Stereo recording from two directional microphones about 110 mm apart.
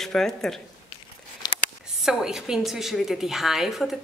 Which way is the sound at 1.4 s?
35° left (ahead or behind).